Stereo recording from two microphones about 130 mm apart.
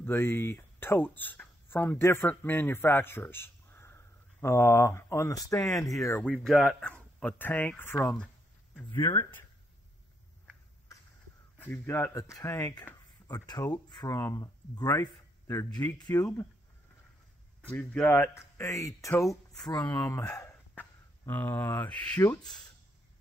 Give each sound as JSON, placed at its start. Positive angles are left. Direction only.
{"t": 0.0, "sound": "speech", "side_deg": 15}
{"t": 6.2, "sound": "speech", "side_deg": 5}
{"t": 8.7, "sound": "speech", "side_deg": 20}
{"t": 11.5, "sound": "speech", "side_deg": 15}
{"t": 14.1, "sound": "speech", "side_deg": 25}
{"t": 16.0, "sound": "speech", "side_deg": 30}
{"t": 17.6, "sound": "speech", "side_deg": 10}
{"t": 20.3, "sound": "a sound", "side_deg": 20}
{"t": 21.3, "sound": "speech", "side_deg": 15}